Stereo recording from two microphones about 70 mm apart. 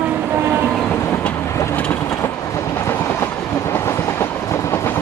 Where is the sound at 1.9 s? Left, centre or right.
Left.